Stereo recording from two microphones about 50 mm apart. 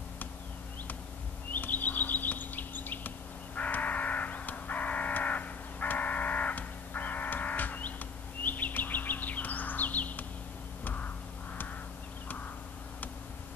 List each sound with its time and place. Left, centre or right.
1.5 s bird: left
3.5 s crow: left
8.5 s bird: left
10.8 s a sound: left